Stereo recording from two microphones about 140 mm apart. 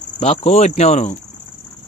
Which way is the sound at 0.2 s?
50° left (ahead or behind).